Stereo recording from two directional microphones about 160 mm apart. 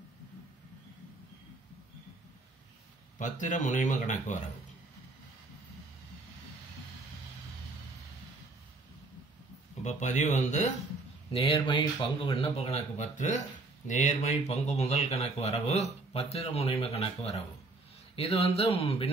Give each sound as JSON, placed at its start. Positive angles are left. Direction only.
{"t": 3.2, "sound": "speech", "side_deg": 50}
{"t": 9.8, "sound": "speech", "side_deg": 50}
{"t": 11.3, "sound": "speech", "side_deg": 30}